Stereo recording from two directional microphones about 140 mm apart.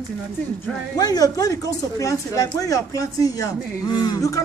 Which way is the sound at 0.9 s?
25° left (ahead or behind).